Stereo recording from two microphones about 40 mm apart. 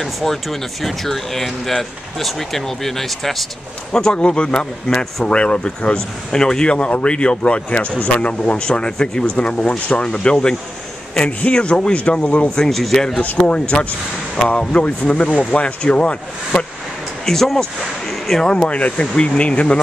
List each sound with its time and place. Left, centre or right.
0.0 s speech: centre
4.2 s speech: left
12.6 s speech: centre
13.2 s speech: left
17.3 s speech: centre
18.1 s a sound: centre
18.4 s speech: centre
18.7 s speech: left